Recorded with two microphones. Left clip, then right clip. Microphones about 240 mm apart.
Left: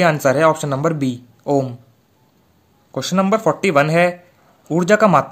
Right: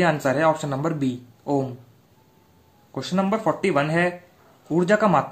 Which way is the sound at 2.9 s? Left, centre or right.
Left.